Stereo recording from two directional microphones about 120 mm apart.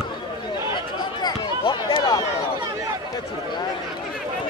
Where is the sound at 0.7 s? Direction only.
40° left (ahead or behind).